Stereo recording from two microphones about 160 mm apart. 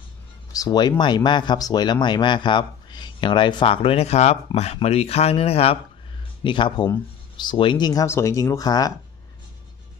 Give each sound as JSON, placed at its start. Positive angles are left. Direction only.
{"t": 0.5, "sound": "speech", "side_deg": 25}